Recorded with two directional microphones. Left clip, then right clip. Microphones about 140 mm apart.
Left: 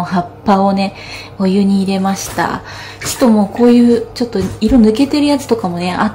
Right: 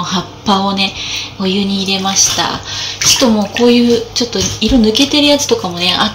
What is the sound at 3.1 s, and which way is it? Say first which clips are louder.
Speech: even; 10° left (ahead or behind).